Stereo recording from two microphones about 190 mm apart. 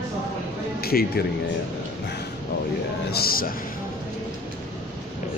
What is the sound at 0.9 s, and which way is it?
Speech, 50° left (ahead or behind).